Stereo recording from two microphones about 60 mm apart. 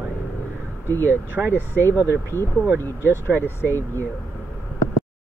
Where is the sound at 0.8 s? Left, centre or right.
Left.